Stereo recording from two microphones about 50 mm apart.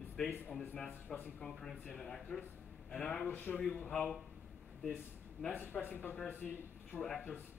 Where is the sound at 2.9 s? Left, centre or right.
Left.